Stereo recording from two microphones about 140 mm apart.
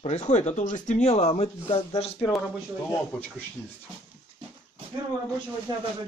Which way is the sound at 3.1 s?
10° left (ahead or behind).